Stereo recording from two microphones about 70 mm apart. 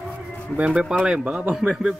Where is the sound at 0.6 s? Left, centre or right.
Centre.